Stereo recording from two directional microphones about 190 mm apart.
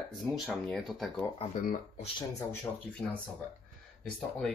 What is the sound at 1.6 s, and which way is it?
Speech, 45° left (ahead or behind).